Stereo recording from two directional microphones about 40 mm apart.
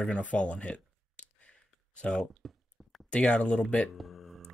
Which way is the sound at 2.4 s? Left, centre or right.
Centre.